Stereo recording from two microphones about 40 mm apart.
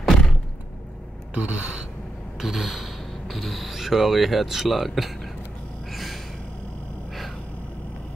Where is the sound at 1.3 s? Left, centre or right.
Right.